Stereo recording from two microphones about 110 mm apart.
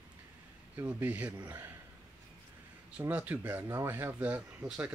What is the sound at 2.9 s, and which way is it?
Speech, 10° right (ahead or behind).